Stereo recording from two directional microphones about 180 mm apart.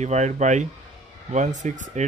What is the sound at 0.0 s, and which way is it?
Speech, 40° right (ahead or behind).